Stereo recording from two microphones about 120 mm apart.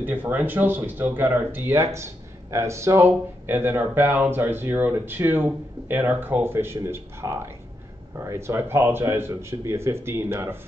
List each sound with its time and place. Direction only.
0.0 s speech: 15° right (ahead or behind)